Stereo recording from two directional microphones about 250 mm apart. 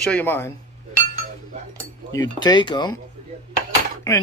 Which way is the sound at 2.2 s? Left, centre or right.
Centre.